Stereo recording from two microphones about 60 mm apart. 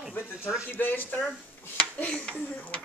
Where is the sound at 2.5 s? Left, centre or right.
Left.